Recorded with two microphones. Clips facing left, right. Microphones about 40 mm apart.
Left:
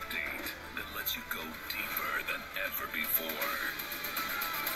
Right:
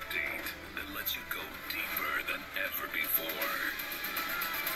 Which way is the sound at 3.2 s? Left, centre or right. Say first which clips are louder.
Right 1 dB; right.